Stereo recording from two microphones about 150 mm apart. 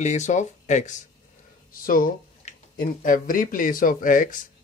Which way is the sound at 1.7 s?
70° left (ahead or behind).